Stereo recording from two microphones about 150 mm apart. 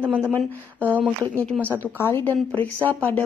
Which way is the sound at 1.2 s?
10° left (ahead or behind).